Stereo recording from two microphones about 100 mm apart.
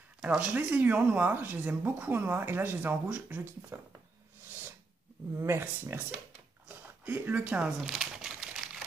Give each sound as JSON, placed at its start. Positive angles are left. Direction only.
{"t": 0.2, "sound": "speech", "side_deg": -10}
{"t": 5.4, "sound": "speech", "side_deg": -25}
{"t": 7.9, "sound": "crumpling", "side_deg": 0}